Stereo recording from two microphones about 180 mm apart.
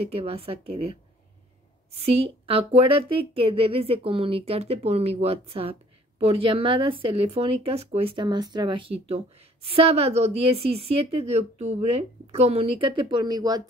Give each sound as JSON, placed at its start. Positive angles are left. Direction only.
{"t": 0.0, "sound": "a woman's voice", "side_deg": -35}